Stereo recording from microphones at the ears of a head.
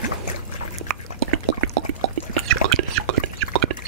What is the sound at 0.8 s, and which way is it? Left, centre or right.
Drip, right.